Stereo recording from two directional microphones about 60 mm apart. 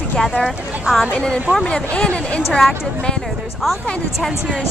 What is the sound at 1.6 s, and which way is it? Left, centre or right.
Speech, centre.